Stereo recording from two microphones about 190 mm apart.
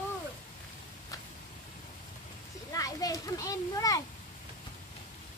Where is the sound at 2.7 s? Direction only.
20° left (ahead or behind).